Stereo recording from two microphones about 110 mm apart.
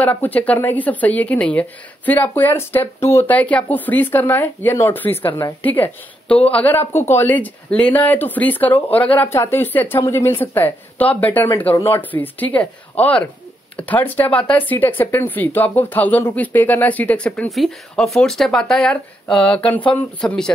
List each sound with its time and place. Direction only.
0.0 s speech: 15° left (ahead or behind)
3.3 s speech: 15° left (ahead or behind)
11.7 s speech: 25° left (ahead or behind)
12.0 s speech: 15° left (ahead or behind)